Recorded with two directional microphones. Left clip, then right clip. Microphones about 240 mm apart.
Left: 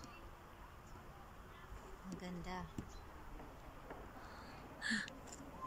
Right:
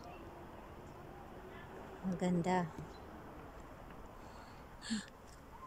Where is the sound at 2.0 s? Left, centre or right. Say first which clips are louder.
Right 14 dB; right.